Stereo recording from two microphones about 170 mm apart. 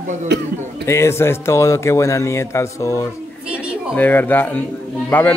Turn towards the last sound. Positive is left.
turn(degrees=10)  # may be behind; listen again after turning